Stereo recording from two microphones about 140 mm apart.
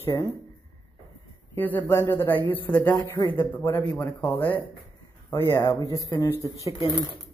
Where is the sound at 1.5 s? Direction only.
15° left (ahead or behind); by 6.2 s 30° left (ahead or behind).